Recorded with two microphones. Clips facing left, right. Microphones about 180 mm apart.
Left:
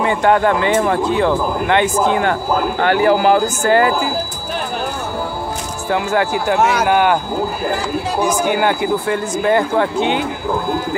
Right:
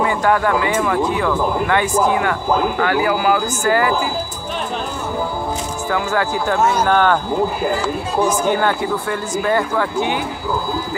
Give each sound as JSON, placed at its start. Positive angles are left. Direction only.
{"t": 0.0, "sound": "a man's voice", "side_deg": 25}
{"t": 5.9, "sound": "speech", "side_deg": 20}
{"t": 6.6, "sound": "speech", "side_deg": 75}
{"t": 6.9, "sound": "speech", "side_deg": 10}
{"t": 8.3, "sound": "speech", "side_deg": 15}
{"t": 9.0, "sound": "speech", "side_deg": 25}